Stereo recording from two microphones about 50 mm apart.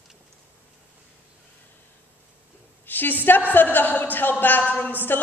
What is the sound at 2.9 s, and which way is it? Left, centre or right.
A woman's voice, left.